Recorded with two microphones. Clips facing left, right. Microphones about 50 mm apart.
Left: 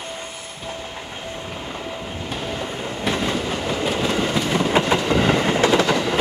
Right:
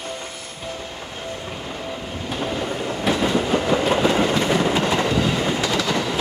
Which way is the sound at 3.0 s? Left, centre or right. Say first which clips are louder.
Right 1 dB; centre.